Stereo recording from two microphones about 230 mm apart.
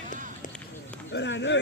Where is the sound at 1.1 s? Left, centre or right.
Left.